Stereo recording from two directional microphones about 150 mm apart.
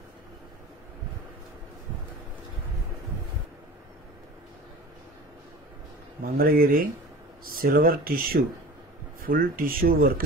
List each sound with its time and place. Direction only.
6.2 s speech: 75° right (ahead or behind)